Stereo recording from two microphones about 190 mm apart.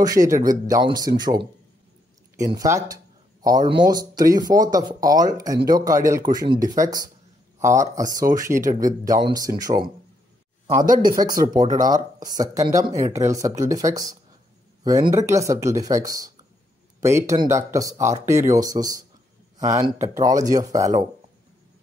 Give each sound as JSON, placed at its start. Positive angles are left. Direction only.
{"t": 0.0, "sound": "speech", "side_deg": -20}
{"t": 2.4, "sound": "speech", "side_deg": -15}
{"t": 10.8, "sound": "speech", "side_deg": -45}
{"t": 11.1, "sound": "speech", "side_deg": -20}